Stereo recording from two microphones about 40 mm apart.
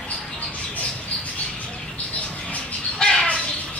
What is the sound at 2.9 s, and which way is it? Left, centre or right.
Bird, centre.